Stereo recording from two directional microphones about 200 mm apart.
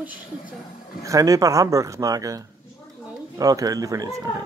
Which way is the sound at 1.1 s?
15° right (ahead or behind).